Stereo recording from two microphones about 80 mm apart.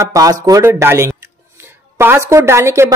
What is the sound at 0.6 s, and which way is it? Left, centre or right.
A woman's voice, right.